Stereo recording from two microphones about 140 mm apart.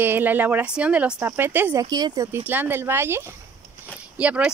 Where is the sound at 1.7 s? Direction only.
30° right (ahead or behind).